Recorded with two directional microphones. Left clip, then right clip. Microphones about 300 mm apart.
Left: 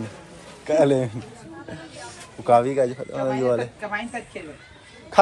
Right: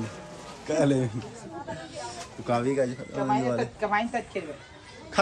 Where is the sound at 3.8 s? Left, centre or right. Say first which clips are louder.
Right 3 dB; right.